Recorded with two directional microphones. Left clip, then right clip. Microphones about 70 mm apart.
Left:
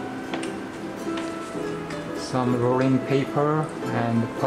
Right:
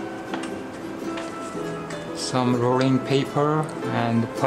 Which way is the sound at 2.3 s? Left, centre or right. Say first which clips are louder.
Right 1 dB; right.